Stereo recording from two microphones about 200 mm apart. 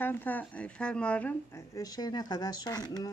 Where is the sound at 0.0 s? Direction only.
10° left (ahead or behind).